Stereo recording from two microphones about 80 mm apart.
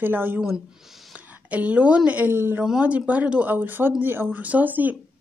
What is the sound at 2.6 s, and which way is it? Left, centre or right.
Speech, centre.